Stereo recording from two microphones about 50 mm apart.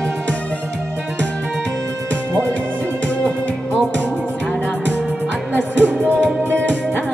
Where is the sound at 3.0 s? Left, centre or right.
Left.